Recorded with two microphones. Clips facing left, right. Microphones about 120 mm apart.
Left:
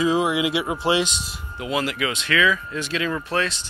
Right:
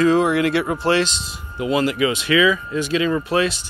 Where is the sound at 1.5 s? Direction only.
Centre (ahead or behind).